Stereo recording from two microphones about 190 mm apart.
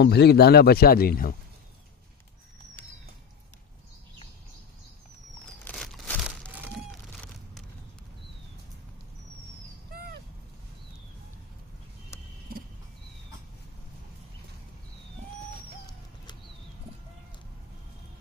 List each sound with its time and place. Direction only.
0.0 s a man's voice: 60° left (ahead or behind)
5.7 s crumpling: 5° left (ahead or behind)
9.9 s a sound: 55° right (ahead or behind)
12.5 s cricket: 50° right (ahead or behind)